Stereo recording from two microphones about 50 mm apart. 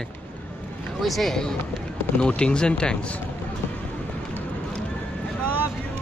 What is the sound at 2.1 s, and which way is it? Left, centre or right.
Speech, centre.